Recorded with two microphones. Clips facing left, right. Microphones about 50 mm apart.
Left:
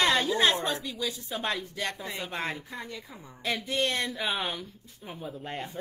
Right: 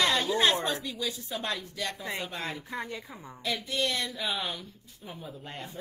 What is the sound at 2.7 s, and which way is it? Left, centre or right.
Speech, right.